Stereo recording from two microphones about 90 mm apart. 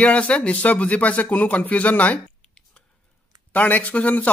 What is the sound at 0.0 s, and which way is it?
Speech, 15° left (ahead or behind).